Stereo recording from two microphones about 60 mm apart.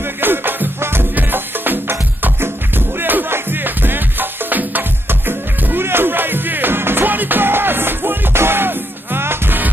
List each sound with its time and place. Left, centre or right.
0.0 s music: right